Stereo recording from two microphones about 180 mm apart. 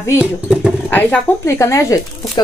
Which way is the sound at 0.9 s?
15° left (ahead or behind).